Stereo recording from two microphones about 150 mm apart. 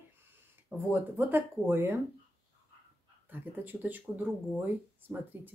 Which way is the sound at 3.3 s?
10° right (ahead or behind).